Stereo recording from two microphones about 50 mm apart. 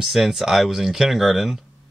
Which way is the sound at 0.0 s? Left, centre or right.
Centre.